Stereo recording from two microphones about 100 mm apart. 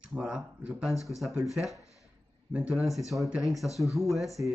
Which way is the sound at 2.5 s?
10° right (ahead or behind).